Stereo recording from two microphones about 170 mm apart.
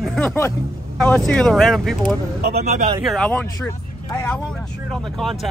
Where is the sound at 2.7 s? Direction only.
35° right (ahead or behind).